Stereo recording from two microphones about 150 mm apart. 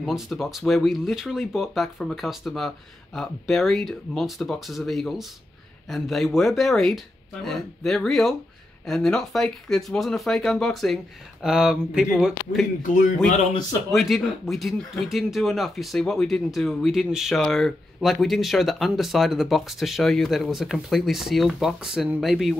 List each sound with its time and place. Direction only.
0.0 s speech: centre (ahead or behind)
12.8 s speech: 60° left (ahead or behind)
13.5 s a man's voice: 25° left (ahead or behind)
13.9 s speech: centre (ahead or behind)